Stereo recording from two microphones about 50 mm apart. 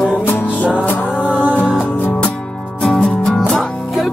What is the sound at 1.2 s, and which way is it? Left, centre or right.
Music, right.